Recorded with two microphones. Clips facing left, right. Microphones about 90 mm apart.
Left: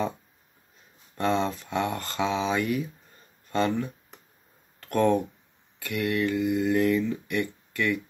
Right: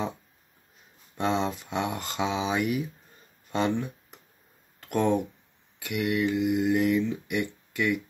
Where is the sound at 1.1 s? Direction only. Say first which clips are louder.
Left 1 dB; 15° right (ahead or behind).